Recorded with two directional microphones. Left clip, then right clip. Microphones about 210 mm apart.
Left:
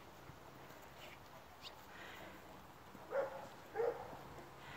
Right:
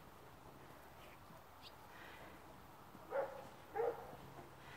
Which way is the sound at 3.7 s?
35° right (ahead or behind).